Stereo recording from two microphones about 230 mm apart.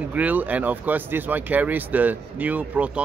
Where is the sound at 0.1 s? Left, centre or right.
Centre.